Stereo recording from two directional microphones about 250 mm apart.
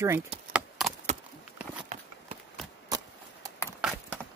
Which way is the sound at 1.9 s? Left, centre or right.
Right.